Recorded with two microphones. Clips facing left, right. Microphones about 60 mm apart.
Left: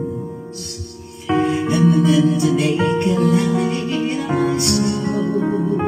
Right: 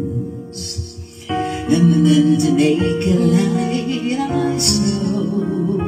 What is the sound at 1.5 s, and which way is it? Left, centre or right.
Music, centre.